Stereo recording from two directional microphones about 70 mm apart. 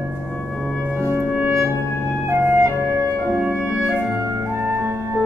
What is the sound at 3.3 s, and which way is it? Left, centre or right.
Music, right.